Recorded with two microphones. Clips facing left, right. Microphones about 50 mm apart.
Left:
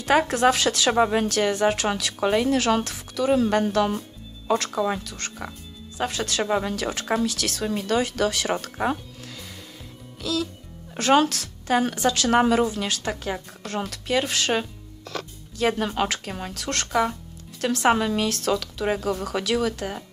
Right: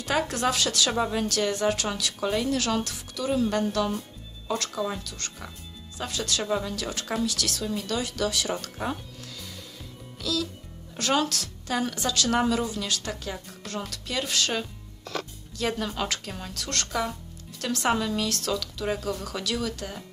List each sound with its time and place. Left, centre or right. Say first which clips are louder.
0.1 s speech: left 6 dB; left
10.2 s speech: left 3 dB; left